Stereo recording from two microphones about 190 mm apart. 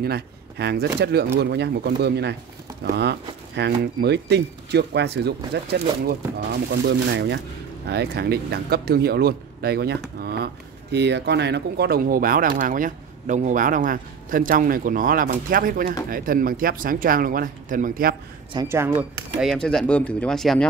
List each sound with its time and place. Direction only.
0.0 s speech: 55° right (ahead or behind)
18.5 s speech: 20° right (ahead or behind)
19.5 s speech: 5° left (ahead or behind)